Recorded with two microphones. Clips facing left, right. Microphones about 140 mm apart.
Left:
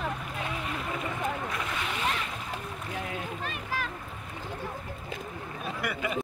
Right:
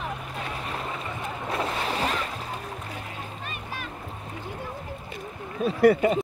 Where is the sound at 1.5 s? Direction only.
35° right (ahead or behind).